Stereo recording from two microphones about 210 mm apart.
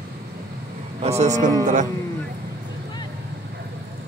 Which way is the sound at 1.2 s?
35° right (ahead or behind).